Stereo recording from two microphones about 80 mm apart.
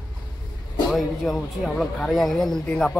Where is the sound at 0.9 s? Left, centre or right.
Centre.